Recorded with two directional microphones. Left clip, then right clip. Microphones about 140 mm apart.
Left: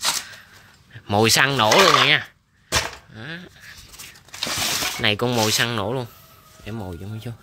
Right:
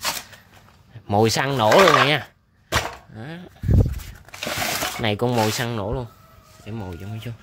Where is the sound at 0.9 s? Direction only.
10° right (ahead or behind).